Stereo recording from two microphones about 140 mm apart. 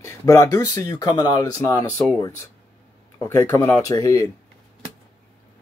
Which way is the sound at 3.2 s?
15° left (ahead or behind).